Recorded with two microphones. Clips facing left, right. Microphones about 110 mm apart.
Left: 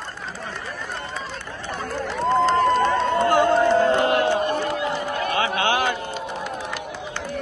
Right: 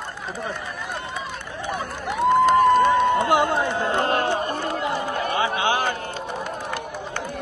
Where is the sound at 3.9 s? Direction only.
50° right (ahead or behind).